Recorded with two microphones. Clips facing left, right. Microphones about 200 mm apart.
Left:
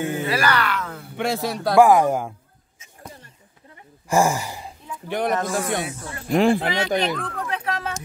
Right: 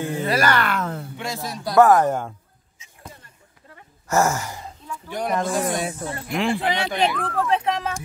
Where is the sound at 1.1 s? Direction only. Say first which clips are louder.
Left 6 dB; 60° left (ahead or behind).